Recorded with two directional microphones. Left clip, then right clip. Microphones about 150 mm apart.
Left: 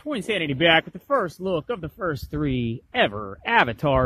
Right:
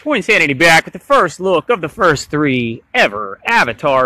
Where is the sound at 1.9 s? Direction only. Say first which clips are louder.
Right 17 dB; 20° right (ahead or behind).